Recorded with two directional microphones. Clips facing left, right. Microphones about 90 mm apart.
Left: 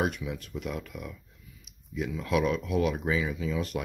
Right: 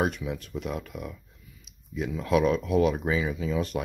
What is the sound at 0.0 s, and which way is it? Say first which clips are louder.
Speech: right 2 dB; 35° right (ahead or behind).